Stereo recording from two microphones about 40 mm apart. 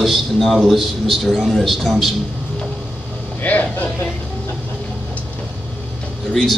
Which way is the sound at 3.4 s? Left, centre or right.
Left.